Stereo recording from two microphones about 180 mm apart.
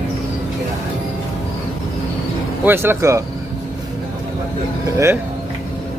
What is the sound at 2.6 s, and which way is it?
Speech, 15° right (ahead or behind).